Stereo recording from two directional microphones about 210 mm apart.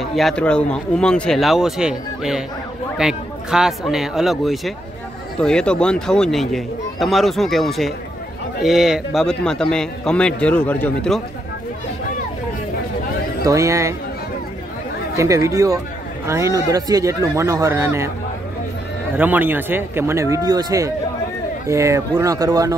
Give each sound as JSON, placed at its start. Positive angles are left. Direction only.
{"t": 0.0, "sound": "a man's voice", "side_deg": 0}
{"t": 13.4, "sound": "speech", "side_deg": -15}
{"t": 15.1, "sound": "speech", "side_deg": -15}
{"t": 19.1, "sound": "speech", "side_deg": -10}